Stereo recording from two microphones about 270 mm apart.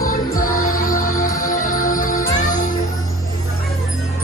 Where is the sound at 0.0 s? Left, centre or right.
Left.